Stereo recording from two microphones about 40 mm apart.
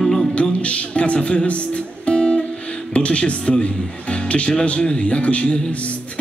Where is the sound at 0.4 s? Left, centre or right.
Left.